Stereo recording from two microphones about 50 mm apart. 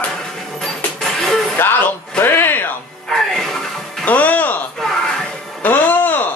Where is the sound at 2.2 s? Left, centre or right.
Left.